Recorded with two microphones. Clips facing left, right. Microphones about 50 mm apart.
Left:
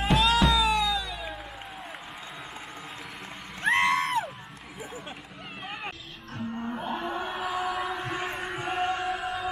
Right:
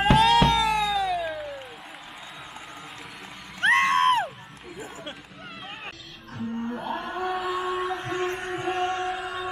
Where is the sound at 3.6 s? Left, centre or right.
Right.